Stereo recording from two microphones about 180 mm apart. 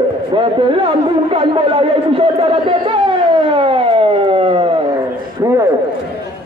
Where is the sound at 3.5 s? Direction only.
30° right (ahead or behind).